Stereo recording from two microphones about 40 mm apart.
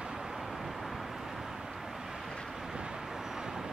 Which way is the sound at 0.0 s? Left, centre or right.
Centre.